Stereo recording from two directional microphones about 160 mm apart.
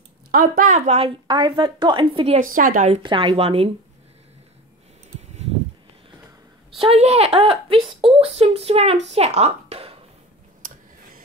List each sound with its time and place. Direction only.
0.3 s a woman's voice: 60° right (ahead or behind); by 1.1 s 40° right (ahead or behind)
1.2 s a woman's voice: 30° right (ahead or behind)
2.5 s speech: 55° right (ahead or behind)
2.9 s speech: 35° right (ahead or behind)
6.8 s speech: 40° right (ahead or behind)